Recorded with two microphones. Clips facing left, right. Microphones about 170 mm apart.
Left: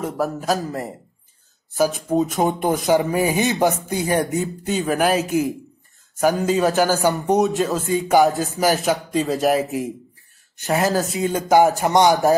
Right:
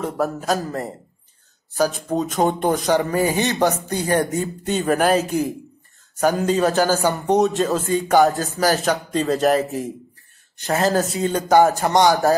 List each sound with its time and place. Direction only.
0.0 s speech: centre (ahead or behind)
1.8 s speech: centre (ahead or behind)
2.9 s speech: 15° left (ahead or behind)
6.8 s speech: 15° left (ahead or behind)
7.2 s speech: centre (ahead or behind)
8.9 s speech: centre (ahead or behind)
9.6 s speech: 15° left (ahead or behind)
10.9 s speech: centre (ahead or behind); by 12.4 s 20° left (ahead or behind)